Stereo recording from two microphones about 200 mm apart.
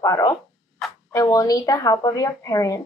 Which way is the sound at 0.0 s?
15° left (ahead or behind).